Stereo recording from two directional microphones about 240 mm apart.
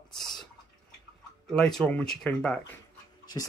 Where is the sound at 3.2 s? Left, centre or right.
Centre.